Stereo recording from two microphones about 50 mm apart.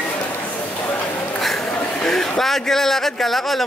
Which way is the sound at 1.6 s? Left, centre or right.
Centre.